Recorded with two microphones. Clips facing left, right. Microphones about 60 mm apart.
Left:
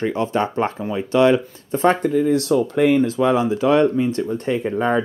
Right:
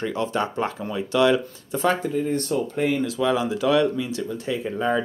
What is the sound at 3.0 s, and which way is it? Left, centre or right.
Speech, left.